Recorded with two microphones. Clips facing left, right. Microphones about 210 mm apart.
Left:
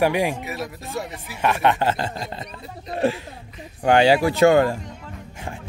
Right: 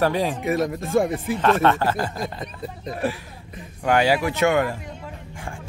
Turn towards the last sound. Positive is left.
turn(degrees=30)  # may be behind; listen again after turning